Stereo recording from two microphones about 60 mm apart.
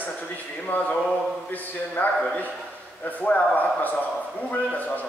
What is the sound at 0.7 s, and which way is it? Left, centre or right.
A man's voice, left.